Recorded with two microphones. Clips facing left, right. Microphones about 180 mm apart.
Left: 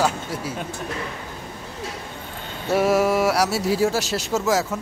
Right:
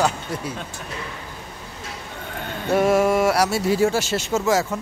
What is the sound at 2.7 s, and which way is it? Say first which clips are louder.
Speech: right 1 dB; 5° left (ahead or behind).